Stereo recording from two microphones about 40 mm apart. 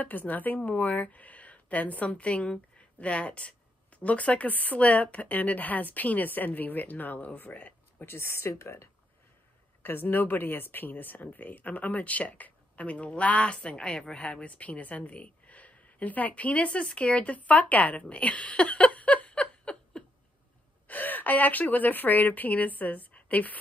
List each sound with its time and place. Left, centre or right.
0.0 s a woman's voice: left
8.0 s speech: left
9.8 s speech: left
13.7 s a woman's voice: centre; by 18.0 s left
18.0 s a sound: left
20.8 s speech: left